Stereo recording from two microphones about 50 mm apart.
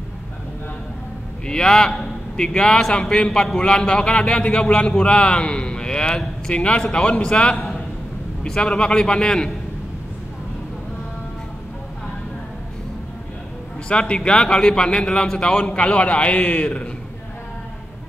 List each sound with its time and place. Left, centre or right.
1.4 s a man's voice: centre
8.7 s a man's voice: centre
13.8 s a man's voice: centre